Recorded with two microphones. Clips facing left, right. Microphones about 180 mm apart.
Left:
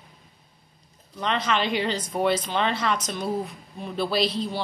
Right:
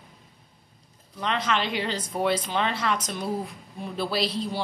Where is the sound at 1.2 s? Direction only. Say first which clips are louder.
Left 2 dB; 5° right (ahead or behind).